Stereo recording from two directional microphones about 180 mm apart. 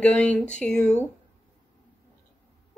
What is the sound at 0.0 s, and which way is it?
A woman's voice, 5° left (ahead or behind).